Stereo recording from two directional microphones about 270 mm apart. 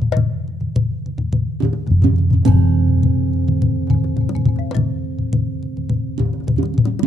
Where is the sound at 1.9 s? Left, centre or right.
Centre.